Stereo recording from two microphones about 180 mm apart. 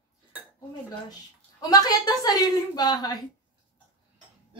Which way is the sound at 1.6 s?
20° left (ahead or behind).